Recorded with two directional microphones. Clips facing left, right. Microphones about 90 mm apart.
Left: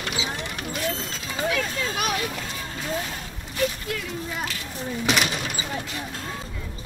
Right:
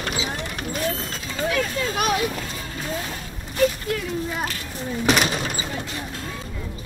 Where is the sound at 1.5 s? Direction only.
40° right (ahead or behind).